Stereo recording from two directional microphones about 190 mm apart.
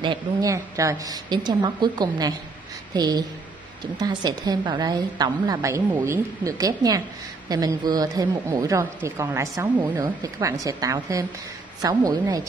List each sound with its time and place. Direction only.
0.0 s a woman's voice: 20° right (ahead or behind)